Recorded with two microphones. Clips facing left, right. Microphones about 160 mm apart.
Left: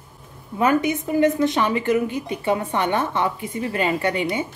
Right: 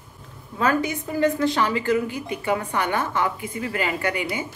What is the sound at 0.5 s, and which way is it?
A woman's voice, 20° left (ahead or behind).